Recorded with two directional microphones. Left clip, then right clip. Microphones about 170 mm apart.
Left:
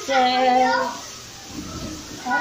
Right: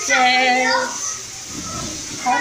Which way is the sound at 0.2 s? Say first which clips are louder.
Right 2 dB; 25° left (ahead or behind).